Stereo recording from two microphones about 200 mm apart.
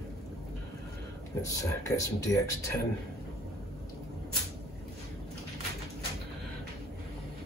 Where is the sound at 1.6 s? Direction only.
15° left (ahead or behind).